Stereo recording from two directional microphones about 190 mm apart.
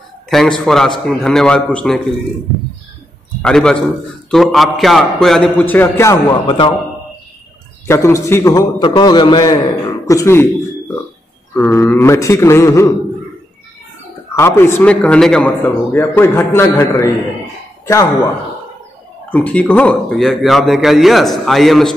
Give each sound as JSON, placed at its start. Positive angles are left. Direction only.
{"t": 0.3, "sound": "a man's voice", "side_deg": 0}
{"t": 3.4, "sound": "a man's voice", "side_deg": 5}
{"t": 7.8, "sound": "a man's voice", "side_deg": 15}
{"t": 11.5, "sound": "a man's voice", "side_deg": 10}
{"t": 14.3, "sound": "a man's voice", "side_deg": 15}
{"t": 19.3, "sound": "a man's voice", "side_deg": 5}